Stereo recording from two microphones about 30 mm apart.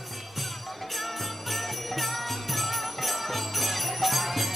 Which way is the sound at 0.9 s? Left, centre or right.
Centre.